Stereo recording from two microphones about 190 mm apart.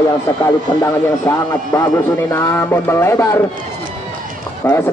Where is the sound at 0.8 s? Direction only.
15° left (ahead or behind).